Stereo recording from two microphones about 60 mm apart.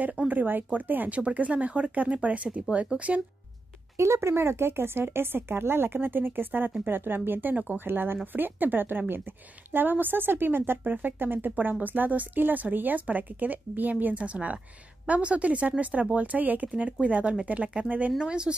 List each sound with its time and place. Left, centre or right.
0.3 s speech: right
3.9 s speech: right; by 18.5 s centre